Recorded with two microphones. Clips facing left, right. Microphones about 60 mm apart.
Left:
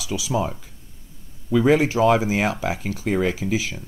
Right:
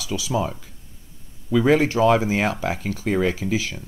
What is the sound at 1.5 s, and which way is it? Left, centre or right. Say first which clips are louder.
Speech: even; centre.